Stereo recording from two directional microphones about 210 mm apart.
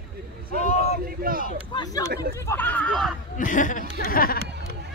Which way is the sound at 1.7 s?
20° left (ahead or behind).